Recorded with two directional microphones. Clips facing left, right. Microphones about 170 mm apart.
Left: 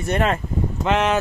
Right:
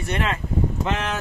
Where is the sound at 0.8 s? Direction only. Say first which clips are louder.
Left 7 dB; 90° left.